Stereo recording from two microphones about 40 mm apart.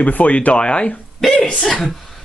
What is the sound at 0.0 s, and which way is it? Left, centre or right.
Speech, left.